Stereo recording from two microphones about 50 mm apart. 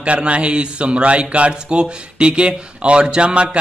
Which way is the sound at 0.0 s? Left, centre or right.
Right.